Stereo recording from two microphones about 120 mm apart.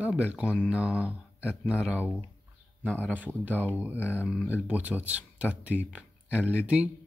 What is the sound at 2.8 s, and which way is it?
Speech, 5° left (ahead or behind).